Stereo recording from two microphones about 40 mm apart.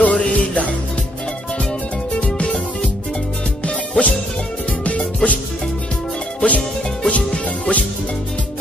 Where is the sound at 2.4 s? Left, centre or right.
Centre.